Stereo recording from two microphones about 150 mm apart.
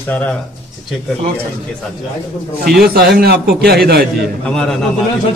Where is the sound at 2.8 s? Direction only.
90° right.